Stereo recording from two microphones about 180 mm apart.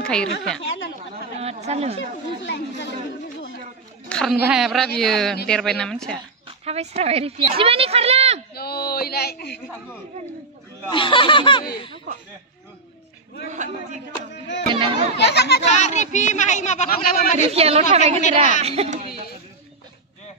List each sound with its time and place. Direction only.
0.0 s a woman's voice: 5° left (ahead or behind)
1.4 s a sound: 35° right (ahead or behind)
2.0 s speech: 85° left
4.1 s a sound: 5° left (ahead or behind)
4.5 s speech: centre (ahead or behind)
6.4 s a woman's voice: 35° right (ahead or behind)
8.5 s a sound: 60° left (ahead or behind)
10.9 s speech: 25° left (ahead or behind)
13.5 s a man's voice: 40° right (ahead or behind)
14.7 s a child's voice: 30° right (ahead or behind)
15.2 s a child's voice: 70° left (ahead or behind)
15.7 s speech: 40° left (ahead or behind)
17.5 s a woman's voice: 35° right (ahead or behind)